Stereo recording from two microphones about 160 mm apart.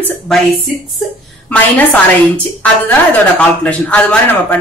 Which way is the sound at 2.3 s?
10° left (ahead or behind).